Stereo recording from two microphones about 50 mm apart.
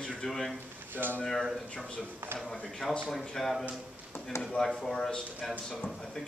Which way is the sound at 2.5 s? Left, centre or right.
Centre.